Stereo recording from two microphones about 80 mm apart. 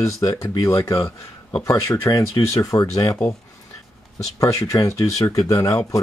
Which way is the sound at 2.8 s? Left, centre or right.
Left.